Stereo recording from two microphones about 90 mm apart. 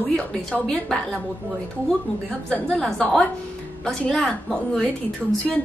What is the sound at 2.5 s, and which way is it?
A woman's voice, 10° left (ahead or behind).